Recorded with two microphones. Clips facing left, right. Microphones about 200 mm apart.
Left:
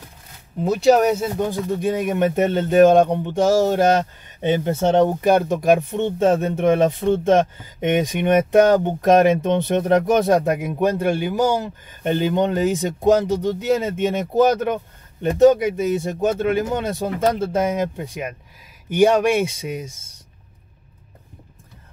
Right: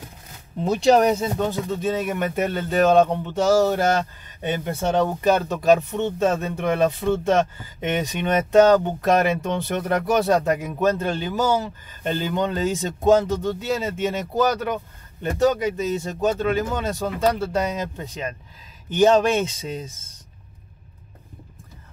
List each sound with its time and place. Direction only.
0.6 s speech: 5° left (ahead or behind)